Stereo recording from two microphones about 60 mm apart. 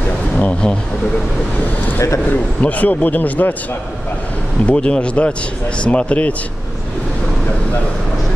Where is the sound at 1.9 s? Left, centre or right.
Left.